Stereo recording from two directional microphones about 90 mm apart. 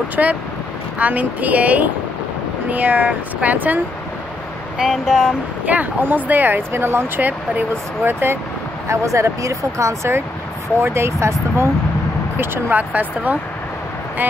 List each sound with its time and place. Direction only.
0.1 s speech: 15° right (ahead or behind)
4.7 s speech: 5° right (ahead or behind)
5.7 s speech: 20° right (ahead or behind)
12.4 s speech: 20° right (ahead or behind)